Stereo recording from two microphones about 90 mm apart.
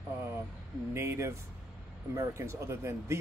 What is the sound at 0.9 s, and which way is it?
Speech, 30° right (ahead or behind).